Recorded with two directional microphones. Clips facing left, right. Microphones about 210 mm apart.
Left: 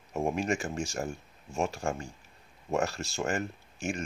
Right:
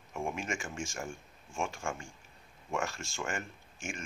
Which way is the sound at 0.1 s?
40° left (ahead or behind).